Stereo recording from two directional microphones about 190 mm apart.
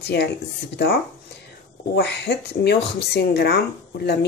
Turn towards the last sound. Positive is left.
turn(degrees=55)  # may be behind; listen again after turning